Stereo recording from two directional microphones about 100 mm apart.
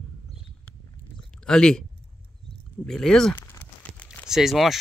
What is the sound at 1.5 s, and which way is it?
Speech, 5° left (ahead or behind).